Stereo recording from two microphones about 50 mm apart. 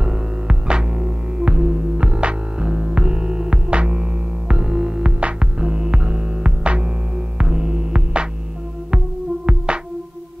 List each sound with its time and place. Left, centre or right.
0.0 s music: centre